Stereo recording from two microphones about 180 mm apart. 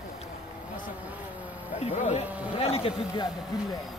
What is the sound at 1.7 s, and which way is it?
Speech, 40° left (ahead or behind).